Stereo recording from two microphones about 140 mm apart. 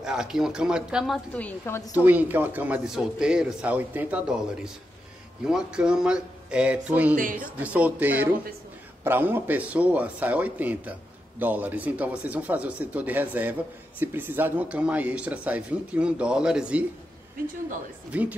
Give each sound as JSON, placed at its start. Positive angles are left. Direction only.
{"t": 0.0, "sound": "speech", "side_deg": -5}
{"t": 1.3, "sound": "a woman's voice", "side_deg": 10}
{"t": 2.0, "sound": "speech", "side_deg": -15}
{"t": 7.2, "sound": "speech", "side_deg": -75}
{"t": 7.6, "sound": "speech", "side_deg": -10}
{"t": 18.1, "sound": "speech", "side_deg": -10}